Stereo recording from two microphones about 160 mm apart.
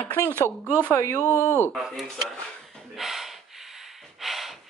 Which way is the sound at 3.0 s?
Centre (ahead or behind).